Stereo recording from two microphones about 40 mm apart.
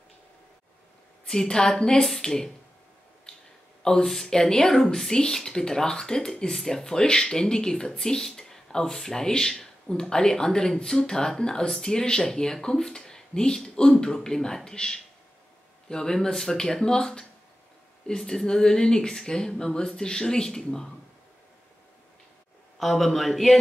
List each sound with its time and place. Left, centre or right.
1.2 s speech: centre
3.8 s speech: centre
22.8 s speech: centre